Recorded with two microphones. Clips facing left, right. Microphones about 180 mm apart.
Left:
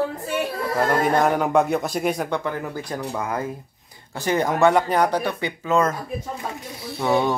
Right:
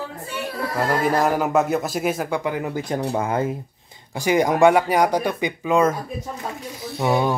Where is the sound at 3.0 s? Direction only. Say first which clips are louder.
Right 4 dB; 30° right (ahead or behind).